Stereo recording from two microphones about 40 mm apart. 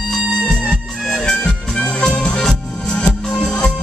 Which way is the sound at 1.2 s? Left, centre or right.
Left.